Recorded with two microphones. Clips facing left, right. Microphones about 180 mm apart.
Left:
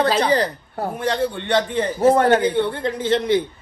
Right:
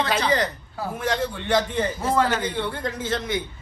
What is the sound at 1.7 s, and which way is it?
Speech, 25° left (ahead or behind).